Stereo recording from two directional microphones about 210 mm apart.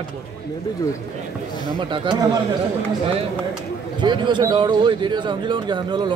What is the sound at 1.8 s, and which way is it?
Speech, 25° right (ahead or behind).